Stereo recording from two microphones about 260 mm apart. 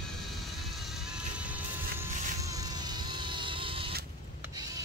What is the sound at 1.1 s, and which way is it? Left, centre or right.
Vehicle, centre.